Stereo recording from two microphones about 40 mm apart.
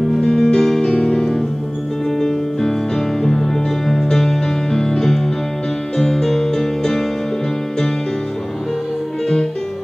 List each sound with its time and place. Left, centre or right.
0.2 s music: centre